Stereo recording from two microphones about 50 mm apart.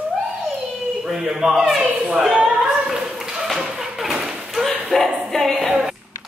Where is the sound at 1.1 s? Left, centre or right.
Centre.